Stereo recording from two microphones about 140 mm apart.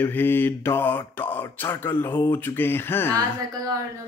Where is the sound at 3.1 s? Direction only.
25° right (ahead or behind).